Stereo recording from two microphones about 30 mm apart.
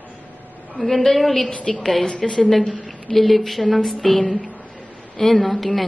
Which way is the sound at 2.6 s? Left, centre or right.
Left.